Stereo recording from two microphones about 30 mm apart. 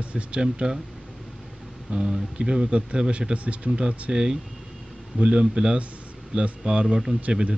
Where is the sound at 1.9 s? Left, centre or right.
Right.